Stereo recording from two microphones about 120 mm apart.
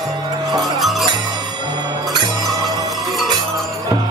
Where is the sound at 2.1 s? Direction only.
30° right (ahead or behind).